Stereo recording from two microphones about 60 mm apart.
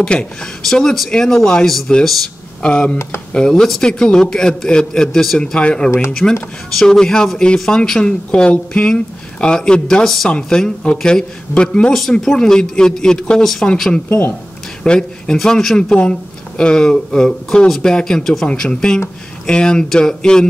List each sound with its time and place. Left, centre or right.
0.0 s speech: centre
8.3 s speech: centre
11.9 s speech: centre
14.0 s speech: left
14.8 s speech: centre
18.5 s speech: centre